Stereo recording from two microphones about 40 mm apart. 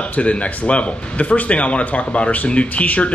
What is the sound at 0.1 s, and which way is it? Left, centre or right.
Speech, left.